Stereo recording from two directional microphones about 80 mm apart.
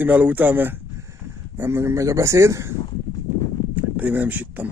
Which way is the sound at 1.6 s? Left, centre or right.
Right.